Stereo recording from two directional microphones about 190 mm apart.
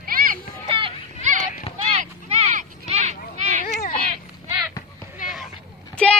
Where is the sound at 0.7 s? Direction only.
25° right (ahead or behind).